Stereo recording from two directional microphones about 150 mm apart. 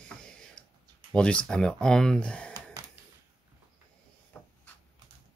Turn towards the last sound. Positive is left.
turn(degrees=15)  # may be behind; listen again after turning